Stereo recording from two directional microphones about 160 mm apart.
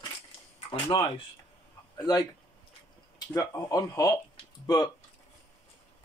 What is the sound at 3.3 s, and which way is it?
Speech, 25° left (ahead or behind).